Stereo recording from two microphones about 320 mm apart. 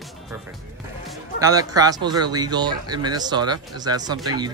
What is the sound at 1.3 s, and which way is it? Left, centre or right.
Speech, centre.